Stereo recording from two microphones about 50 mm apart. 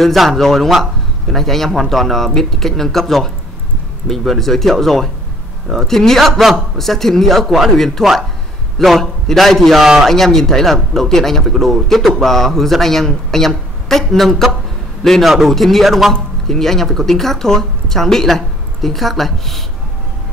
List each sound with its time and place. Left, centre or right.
0.0 s a man's voice: centre